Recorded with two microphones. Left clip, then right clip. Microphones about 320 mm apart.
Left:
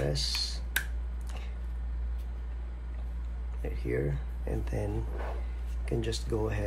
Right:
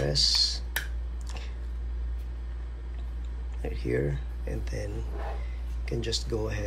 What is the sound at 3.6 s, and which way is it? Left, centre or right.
Speech, centre.